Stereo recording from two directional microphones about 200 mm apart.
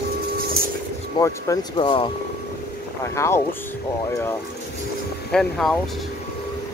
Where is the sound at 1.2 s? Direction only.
20° left (ahead or behind).